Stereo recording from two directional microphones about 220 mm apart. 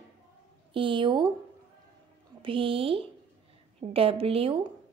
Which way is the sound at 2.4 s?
25° right (ahead or behind).